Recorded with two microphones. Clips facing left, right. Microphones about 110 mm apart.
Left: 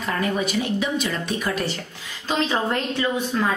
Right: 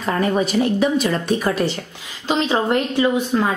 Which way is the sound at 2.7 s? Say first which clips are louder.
Right 6 dB; 20° right (ahead or behind).